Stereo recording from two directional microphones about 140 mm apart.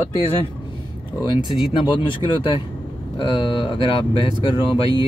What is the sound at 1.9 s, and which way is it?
Speech, 35° left (ahead or behind).